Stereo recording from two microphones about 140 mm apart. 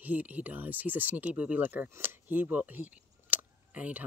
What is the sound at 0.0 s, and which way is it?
Speech, 10° right (ahead or behind).